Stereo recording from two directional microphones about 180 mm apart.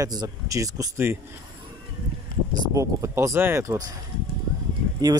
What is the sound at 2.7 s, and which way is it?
Speech, 15° right (ahead or behind).